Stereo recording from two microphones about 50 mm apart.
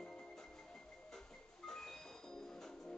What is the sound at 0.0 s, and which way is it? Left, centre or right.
Music, centre.